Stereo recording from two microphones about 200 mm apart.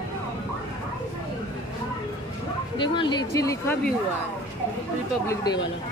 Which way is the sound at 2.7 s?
25° left (ahead or behind).